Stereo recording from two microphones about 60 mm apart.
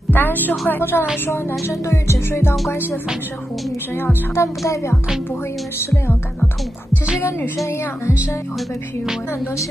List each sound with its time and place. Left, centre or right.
0.1 s a woman's voice: left
1.9 s music: left
3.9 s speech: left
5.8 s music: left